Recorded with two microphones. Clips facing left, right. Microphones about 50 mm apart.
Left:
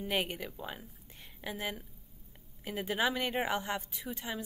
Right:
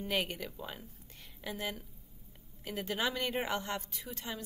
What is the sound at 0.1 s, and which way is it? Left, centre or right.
A woman's voice, centre.